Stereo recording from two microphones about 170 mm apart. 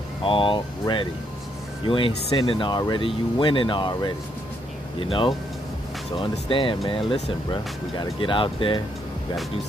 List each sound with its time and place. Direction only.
0.2 s speech: 30° left (ahead or behind)
6.5 s speech: 30° left (ahead or behind)